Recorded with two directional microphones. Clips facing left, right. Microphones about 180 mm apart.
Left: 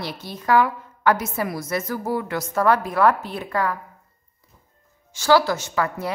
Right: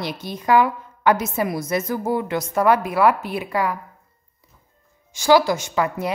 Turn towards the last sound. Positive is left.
turn(degrees=-15)  # may be behind; listen again after turning